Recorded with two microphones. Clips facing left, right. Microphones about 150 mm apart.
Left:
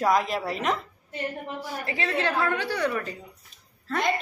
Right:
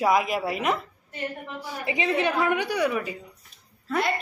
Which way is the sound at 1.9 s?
15° right (ahead or behind).